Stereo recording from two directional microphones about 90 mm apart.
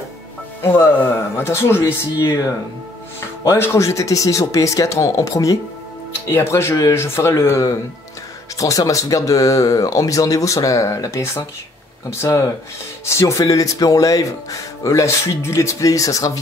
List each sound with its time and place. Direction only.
0.6 s speech: 25° left (ahead or behind)
3.4 s speech: 30° left (ahead or behind)